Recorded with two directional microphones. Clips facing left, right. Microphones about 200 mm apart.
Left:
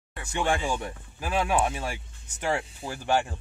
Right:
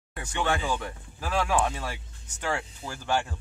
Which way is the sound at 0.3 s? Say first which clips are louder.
Left 1 dB; 25° left (ahead or behind).